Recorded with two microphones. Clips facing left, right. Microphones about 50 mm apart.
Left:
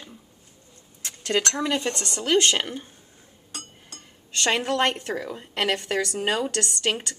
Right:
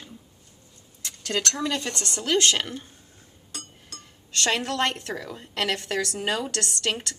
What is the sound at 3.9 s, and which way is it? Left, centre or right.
Speech, centre.